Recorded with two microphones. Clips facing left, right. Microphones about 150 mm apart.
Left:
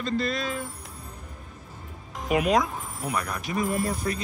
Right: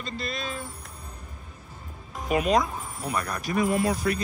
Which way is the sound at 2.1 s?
10° left (ahead or behind).